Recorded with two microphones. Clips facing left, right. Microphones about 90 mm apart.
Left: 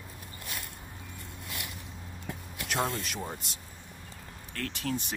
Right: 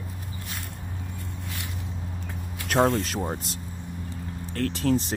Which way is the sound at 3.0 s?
40° right (ahead or behind).